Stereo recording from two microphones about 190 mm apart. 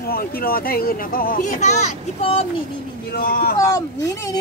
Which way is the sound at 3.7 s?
15° left (ahead or behind).